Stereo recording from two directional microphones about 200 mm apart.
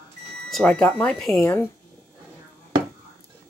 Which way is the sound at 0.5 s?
5° left (ahead or behind).